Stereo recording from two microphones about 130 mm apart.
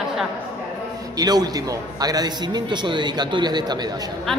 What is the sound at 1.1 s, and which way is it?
A man's voice, 30° right (ahead or behind).